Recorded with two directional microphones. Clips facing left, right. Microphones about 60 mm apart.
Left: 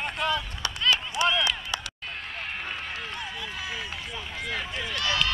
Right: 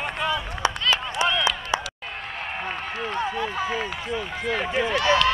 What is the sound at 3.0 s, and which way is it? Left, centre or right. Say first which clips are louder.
Run: right 9 dB; right.